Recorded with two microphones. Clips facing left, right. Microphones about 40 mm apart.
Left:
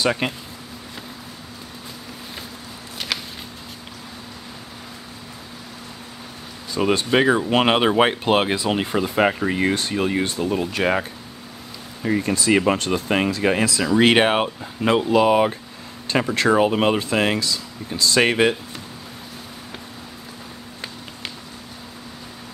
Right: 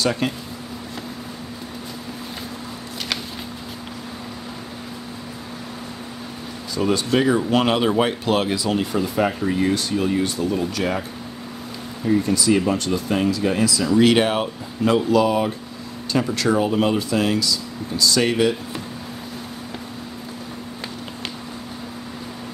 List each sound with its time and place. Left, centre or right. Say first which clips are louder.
0.0 s speech: even; left
6.7 s speech: left 1 dB; left